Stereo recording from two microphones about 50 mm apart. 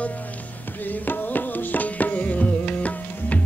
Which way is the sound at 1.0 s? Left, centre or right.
Left.